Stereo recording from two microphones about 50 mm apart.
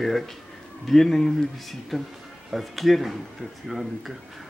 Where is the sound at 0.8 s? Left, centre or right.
Centre.